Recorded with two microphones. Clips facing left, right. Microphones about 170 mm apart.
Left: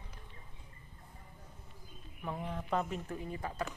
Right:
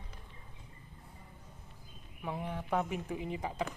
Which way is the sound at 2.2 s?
5° right (ahead or behind).